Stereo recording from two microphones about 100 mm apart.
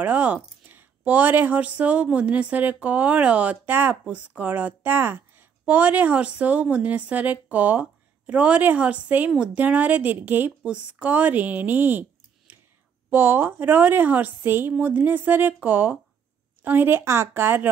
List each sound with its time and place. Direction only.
0.0 s a woman's voice: 15° right (ahead or behind)
12.5 s whispering: 20° right (ahead or behind)
13.1 s speech: 20° right (ahead or behind)